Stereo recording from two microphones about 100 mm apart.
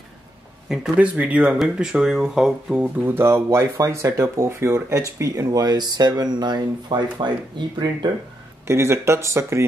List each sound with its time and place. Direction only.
0.7 s speech: 10° right (ahead or behind); by 8.1 s 50° right (ahead or behind)
8.6 s speech: 25° right (ahead or behind)